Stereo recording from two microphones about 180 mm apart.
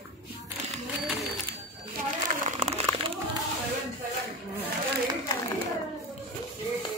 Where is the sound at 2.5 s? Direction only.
40° right (ahead or behind).